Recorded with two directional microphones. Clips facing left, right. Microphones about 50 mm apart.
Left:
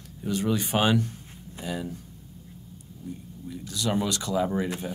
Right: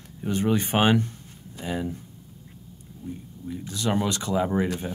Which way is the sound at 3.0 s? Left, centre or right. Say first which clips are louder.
Right 3 dB; right.